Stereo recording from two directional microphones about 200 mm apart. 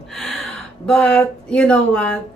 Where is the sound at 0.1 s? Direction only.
Centre (ahead or behind).